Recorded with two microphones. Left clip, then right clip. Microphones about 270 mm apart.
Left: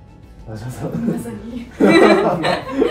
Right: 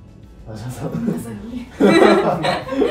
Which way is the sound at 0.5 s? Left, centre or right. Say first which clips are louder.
Left 1 dB; centre.